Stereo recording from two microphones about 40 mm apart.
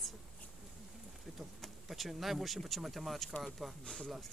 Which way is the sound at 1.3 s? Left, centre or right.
Centre.